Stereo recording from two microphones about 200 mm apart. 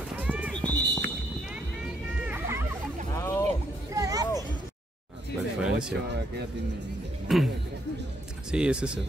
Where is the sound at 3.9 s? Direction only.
15° right (ahead or behind).